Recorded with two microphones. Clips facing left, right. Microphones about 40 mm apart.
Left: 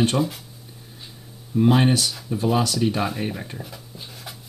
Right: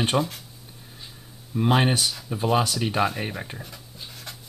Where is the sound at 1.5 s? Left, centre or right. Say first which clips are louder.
Left 3 dB; centre.